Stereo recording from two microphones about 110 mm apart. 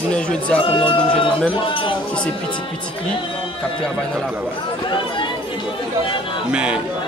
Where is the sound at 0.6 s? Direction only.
55° left (ahead or behind).